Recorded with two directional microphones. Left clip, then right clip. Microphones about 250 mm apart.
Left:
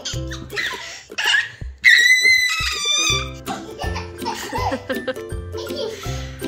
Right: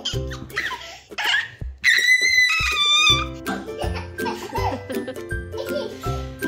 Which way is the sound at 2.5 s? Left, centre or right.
Centre.